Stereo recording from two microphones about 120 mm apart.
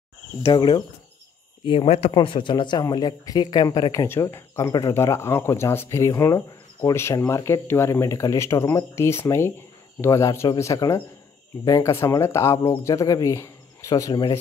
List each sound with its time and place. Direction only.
0.5 s speech: 40° left (ahead or behind)
2.1 s speech: 40° left (ahead or behind)